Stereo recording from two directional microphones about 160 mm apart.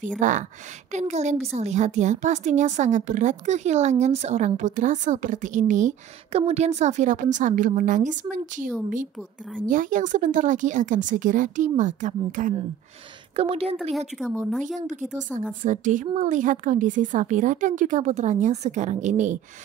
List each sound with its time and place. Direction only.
0.2 s a woman's voice: 55° right (ahead or behind)
13.4 s a woman's voice: 35° right (ahead or behind)
13.9 s speech: centre (ahead or behind)
14.6 s a woman's voice: 50° right (ahead or behind)